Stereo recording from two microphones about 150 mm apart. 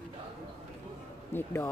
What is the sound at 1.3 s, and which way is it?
Speech, 15° left (ahead or behind).